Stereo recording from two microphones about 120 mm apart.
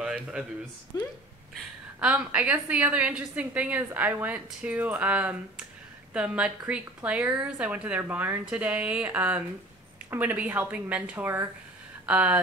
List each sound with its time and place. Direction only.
0.9 s speech: 30° left (ahead or behind)
2.0 s a woman's voice: 10° right (ahead or behind)